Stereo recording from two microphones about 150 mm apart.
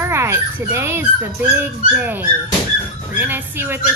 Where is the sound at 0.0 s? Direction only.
20° right (ahead or behind).